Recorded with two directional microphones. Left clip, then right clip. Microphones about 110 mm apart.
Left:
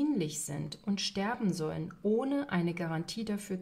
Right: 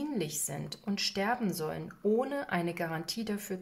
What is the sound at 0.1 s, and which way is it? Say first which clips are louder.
Speech: left 1 dB; 20° left (ahead or behind).